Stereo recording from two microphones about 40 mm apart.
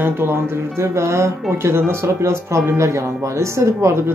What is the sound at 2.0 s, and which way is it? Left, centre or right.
Speech, right.